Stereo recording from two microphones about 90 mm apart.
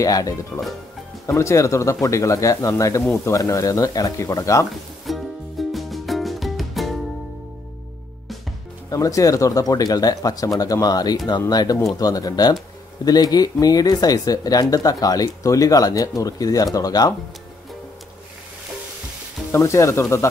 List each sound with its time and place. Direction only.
0.0 s speech: 40° left (ahead or behind)
5.0 s music: centre (ahead or behind)
8.9 s speech: 40° left (ahead or behind)
19.5 s speech: 35° left (ahead or behind)